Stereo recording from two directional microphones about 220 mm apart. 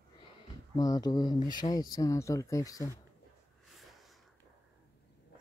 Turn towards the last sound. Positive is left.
turn(degrees=0)  # may be behind; listen again after turning